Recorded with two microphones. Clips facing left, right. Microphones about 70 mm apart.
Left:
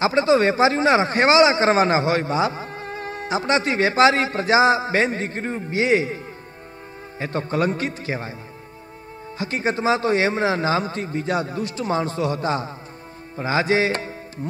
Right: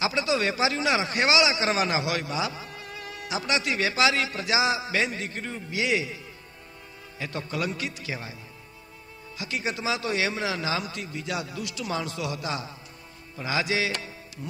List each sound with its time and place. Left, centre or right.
0.0 s a man's voice: left
9.4 s a man's voice: left
13.4 s music: left